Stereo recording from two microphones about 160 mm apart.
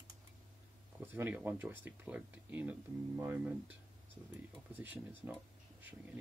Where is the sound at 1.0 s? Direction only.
10° right (ahead or behind).